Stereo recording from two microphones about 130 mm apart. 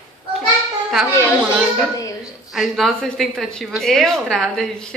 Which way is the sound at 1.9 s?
25° left (ahead or behind).